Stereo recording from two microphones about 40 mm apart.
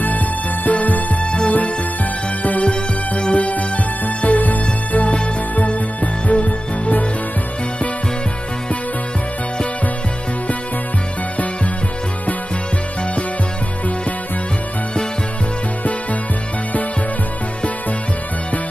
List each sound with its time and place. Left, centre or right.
0.7 s music: left
1.2 s music: left
2.6 s music: left
5.1 s music: left